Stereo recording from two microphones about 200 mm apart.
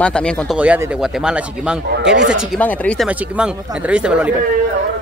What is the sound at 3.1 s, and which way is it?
Speech, 5° right (ahead or behind).